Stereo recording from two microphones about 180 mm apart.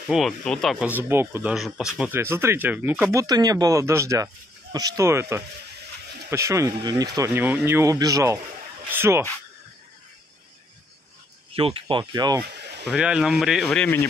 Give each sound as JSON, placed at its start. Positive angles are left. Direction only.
{"t": 0.1, "sound": "speech", "side_deg": 0}
{"t": 11.5, "sound": "speech", "side_deg": -30}
{"t": 12.9, "sound": "speech", "side_deg": -5}